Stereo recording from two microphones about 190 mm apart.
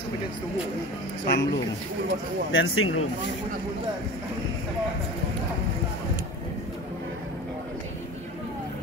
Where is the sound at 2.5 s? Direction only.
90° left.